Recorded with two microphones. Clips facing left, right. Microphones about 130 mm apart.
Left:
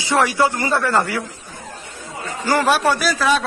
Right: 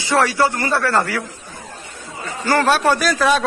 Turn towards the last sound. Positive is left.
turn(degrees=0)  # may be behind; listen again after turning